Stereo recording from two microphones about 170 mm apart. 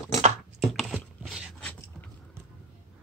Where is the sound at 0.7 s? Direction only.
Centre (ahead or behind).